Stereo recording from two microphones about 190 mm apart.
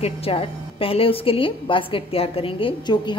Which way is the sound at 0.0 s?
30° left (ahead or behind).